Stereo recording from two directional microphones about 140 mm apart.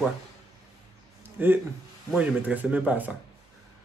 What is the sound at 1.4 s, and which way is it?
Speech, 10° right (ahead or behind).